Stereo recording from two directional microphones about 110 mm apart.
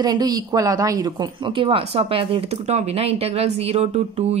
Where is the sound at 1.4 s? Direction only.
50° right (ahead or behind).